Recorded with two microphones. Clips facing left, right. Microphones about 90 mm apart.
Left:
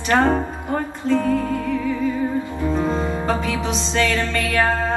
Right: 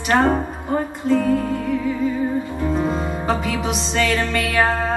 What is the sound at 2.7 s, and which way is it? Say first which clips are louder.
Music: left 2 dB; 15° right (ahead or behind).